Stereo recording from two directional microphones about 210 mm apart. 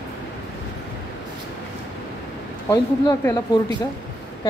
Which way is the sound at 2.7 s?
15° left (ahead or behind).